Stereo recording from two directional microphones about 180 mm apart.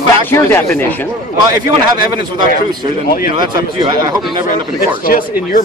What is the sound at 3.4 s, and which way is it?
Speech, 25° right (ahead or behind).